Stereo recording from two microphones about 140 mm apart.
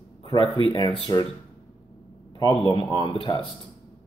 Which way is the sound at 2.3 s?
30° left (ahead or behind).